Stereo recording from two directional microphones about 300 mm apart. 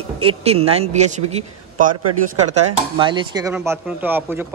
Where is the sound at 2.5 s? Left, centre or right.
Centre.